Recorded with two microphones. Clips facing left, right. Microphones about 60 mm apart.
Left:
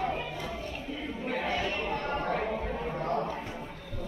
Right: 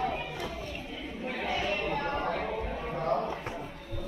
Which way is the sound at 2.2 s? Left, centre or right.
Left.